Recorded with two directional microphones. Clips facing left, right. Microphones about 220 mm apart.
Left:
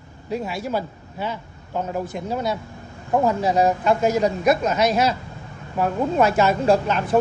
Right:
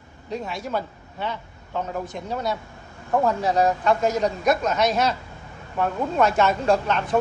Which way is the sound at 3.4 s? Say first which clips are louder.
Left 1 dB; 20° left (ahead or behind).